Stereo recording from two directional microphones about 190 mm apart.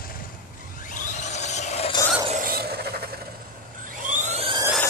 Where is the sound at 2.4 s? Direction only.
55° right (ahead or behind).